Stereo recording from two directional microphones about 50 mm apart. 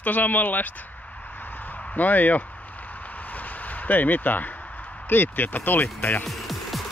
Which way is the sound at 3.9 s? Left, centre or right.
Left.